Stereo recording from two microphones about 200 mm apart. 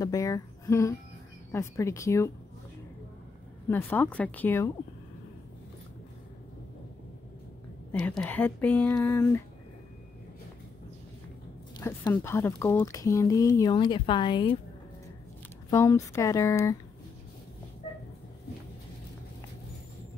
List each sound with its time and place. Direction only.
0.0 s speech: 15° left (ahead or behind)
3.6 s speech: 10° left (ahead or behind)
8.0 s speech: 5° left (ahead or behind)
11.8 s speech: 10° left (ahead or behind)
15.7 s speech: 15° left (ahead or behind)